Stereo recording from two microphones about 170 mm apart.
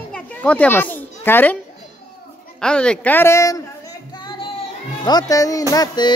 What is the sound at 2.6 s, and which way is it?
Speech, 5° left (ahead or behind).